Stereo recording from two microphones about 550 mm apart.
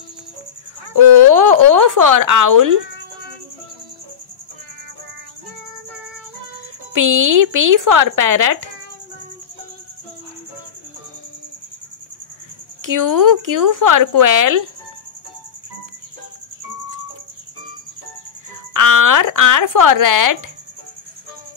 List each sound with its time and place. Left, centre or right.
0.9 s speech: right
6.9 s speech: right
12.8 s speech: right
18.7 s speech: right